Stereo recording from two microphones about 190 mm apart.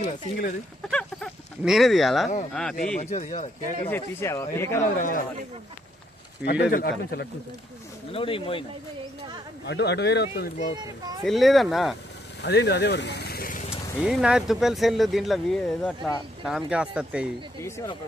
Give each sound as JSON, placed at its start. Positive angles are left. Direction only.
{"t": 0.0, "sound": "speech", "side_deg": 45}
{"t": 0.8, "sound": "fowl", "side_deg": 5}
{"t": 2.5, "sound": "speech", "side_deg": 5}
{"t": 3.0, "sound": "speech", "side_deg": 35}
{"t": 3.9, "sound": "speech", "side_deg": 15}
{"t": 4.9, "sound": "speech", "side_deg": 45}
{"t": 6.7, "sound": "speech", "side_deg": 50}
{"t": 8.1, "sound": "speech", "side_deg": 30}
{"t": 9.7, "sound": "speech", "side_deg": 60}
{"t": 10.8, "sound": "a child's voice", "side_deg": -20}
{"t": 11.2, "sound": "speech", "side_deg": 0}
{"t": 12.4, "sound": "speech", "side_deg": 60}
{"t": 13.7, "sound": "speech", "side_deg": -5}
{"t": 17.6, "sound": "speech", "side_deg": 15}